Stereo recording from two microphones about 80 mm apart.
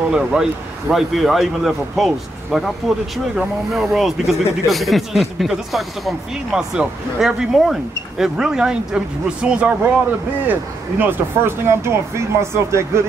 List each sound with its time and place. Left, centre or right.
0.1 s speech: centre; by 13.0 s right